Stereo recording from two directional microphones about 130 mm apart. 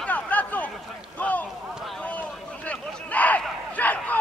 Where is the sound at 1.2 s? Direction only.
10° left (ahead or behind).